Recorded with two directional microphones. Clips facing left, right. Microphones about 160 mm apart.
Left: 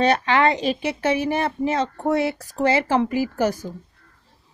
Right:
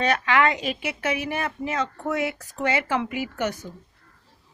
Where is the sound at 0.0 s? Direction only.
30° left (ahead or behind).